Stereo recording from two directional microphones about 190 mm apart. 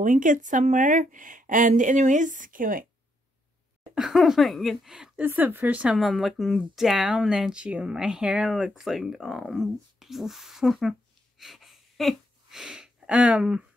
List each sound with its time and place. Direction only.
0.0 s speech: 40° right (ahead or behind)
3.9 s speech: centre (ahead or behind)